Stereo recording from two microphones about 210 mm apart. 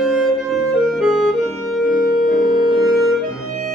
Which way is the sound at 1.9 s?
40° left (ahead or behind).